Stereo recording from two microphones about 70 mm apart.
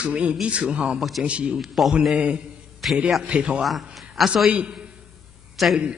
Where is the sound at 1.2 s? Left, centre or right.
Centre.